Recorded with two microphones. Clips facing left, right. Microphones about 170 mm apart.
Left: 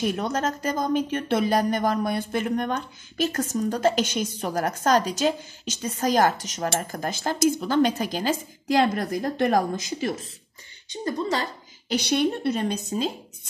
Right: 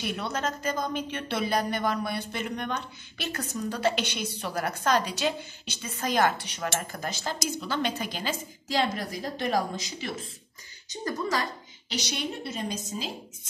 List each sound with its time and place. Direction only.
0.0 s speech: 45° left (ahead or behind)
10.9 s speech: 25° left (ahead or behind)
11.9 s a woman's voice: 55° left (ahead or behind)